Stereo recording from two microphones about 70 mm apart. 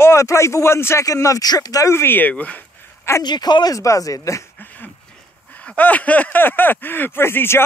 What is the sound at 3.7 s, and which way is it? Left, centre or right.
Speech, left.